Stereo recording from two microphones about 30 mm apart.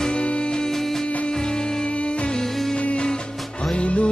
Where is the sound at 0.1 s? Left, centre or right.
Left.